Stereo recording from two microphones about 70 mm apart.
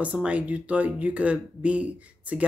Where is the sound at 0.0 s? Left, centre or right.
Centre.